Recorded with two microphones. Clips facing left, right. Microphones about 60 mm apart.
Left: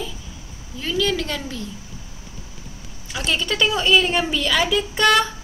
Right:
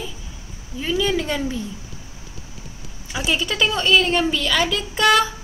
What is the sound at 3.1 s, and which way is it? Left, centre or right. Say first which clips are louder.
A woman's voice: right 1 dB; centre.